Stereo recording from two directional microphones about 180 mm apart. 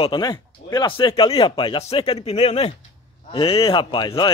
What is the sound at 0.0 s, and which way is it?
Speech, 25° left (ahead or behind).